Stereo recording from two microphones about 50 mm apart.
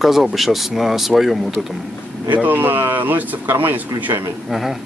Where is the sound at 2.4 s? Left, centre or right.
Right.